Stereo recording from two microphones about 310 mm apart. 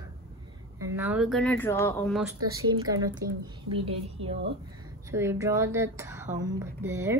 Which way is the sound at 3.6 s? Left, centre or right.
Centre.